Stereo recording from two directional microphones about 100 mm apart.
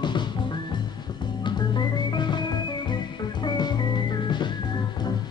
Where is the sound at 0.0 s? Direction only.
50° left (ahead or behind).